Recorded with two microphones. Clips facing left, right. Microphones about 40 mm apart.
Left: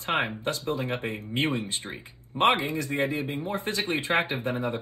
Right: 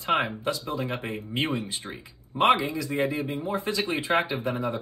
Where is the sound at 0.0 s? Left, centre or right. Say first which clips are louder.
Right 2 dB; left.